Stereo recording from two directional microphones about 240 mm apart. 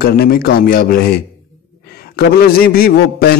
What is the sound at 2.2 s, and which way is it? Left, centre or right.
A man's voice, left.